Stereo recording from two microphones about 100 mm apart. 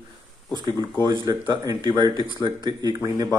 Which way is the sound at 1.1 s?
45° right (ahead or behind).